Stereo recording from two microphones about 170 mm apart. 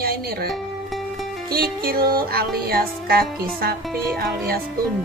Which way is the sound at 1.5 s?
60° right (ahead or behind).